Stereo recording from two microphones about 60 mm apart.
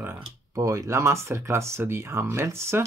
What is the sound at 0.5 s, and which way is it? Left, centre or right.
Speech, right.